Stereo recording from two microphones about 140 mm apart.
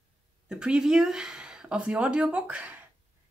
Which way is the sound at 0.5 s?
5° right (ahead or behind).